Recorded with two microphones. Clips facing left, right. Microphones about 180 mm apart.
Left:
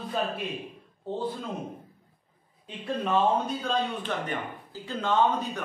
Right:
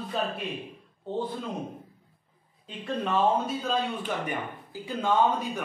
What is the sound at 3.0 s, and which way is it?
A man's voice, 5° right (ahead or behind).